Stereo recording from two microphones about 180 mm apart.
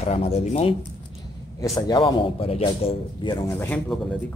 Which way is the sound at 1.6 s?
25° left (ahead or behind).